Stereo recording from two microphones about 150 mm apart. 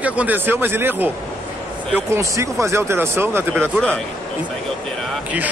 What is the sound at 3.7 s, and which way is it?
Speech, 10° left (ahead or behind).